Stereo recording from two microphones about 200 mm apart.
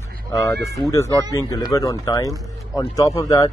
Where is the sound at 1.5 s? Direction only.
15° left (ahead or behind).